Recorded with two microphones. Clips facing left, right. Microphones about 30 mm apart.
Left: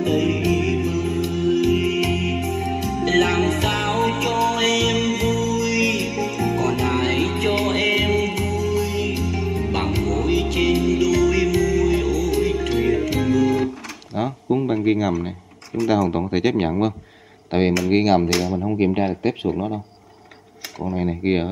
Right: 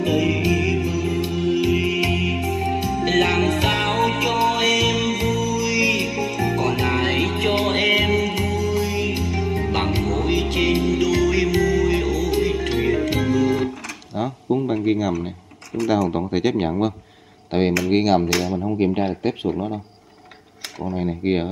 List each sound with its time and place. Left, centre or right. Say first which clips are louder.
0.0 s music: even; right
14.1 s a sound: left 1 dB; centre
15.9 s speech: left 1 dB; centre
21.0 s speech: left 1 dB; centre